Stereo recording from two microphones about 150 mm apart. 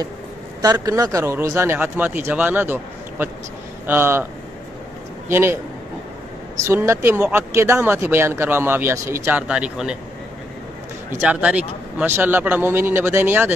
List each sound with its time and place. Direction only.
0.6 s speech: 25° right (ahead or behind)
5.3 s speech: 15° right (ahead or behind)
6.6 s speech: 20° right (ahead or behind)
9.5 s speech: 5° right (ahead or behind)
11.1 s speech: 10° right (ahead or behind)